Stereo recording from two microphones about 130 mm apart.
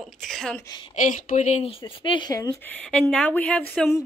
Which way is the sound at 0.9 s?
75° left (ahead or behind).